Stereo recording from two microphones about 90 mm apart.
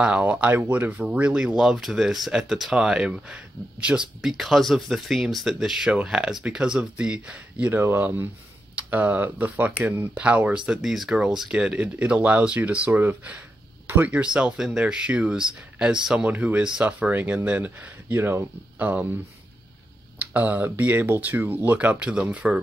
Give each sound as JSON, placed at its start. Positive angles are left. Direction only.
{"t": 0.0, "sound": "speech", "side_deg": -15}
{"t": 20.2, "sound": "speech", "side_deg": -20}